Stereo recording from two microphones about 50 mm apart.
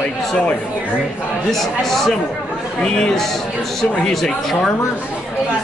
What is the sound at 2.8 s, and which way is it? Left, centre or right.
A man's voice, centre.